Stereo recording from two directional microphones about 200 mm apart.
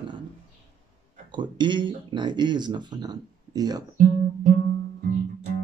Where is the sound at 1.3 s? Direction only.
20° right (ahead or behind).